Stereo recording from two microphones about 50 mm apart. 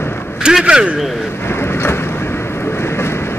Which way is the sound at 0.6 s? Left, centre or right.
Centre.